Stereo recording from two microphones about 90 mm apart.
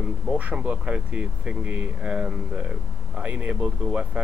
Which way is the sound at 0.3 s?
15° right (ahead or behind).